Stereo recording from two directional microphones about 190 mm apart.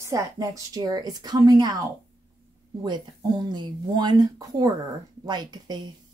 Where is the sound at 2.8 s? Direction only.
20° right (ahead or behind).